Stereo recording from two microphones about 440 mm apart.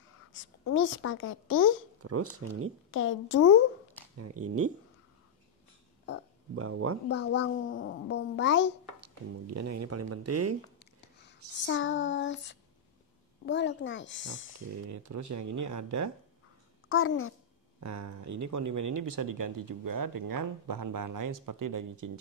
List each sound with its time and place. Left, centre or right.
0.3 s a child's voice: left
2.3 s speech: right
2.9 s a child's voice: left
4.2 s speech: right
6.5 s speech: right
7.1 s a child's voice: left
9.0 s speech: right
10.8 s a child's voice: left
14.9 s speech: right
16.9 s a child's voice: left
17.7 s speech: right